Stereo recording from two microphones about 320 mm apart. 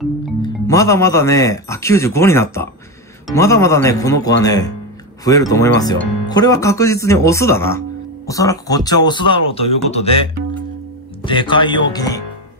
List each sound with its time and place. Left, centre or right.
0.4 s speech: centre
11.2 s speech: centre